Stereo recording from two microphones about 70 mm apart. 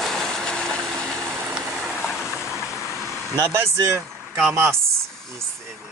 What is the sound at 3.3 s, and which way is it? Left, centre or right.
Speech, right.